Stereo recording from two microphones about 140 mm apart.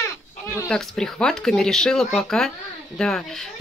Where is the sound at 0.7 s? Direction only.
5° left (ahead or behind).